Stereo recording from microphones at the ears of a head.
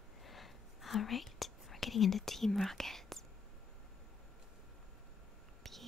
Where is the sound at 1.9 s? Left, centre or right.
Left.